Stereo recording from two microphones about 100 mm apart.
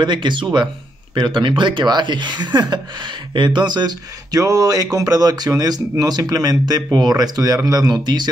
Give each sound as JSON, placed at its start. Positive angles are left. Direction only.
{"t": 0.0, "sound": "speech", "side_deg": -50}
{"t": 4.4, "sound": "speech", "side_deg": -35}